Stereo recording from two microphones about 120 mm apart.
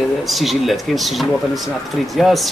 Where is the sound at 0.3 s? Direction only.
Centre (ahead or behind).